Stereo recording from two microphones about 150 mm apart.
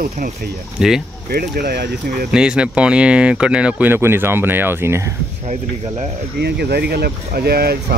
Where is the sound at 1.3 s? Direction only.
90° right.